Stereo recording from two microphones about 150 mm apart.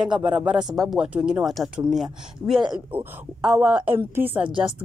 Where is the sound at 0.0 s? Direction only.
5° right (ahead or behind).